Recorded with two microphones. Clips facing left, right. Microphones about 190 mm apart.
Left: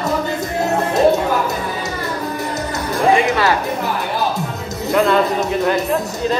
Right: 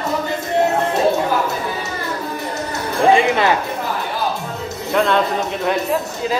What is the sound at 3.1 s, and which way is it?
Music, 20° right (ahead or behind).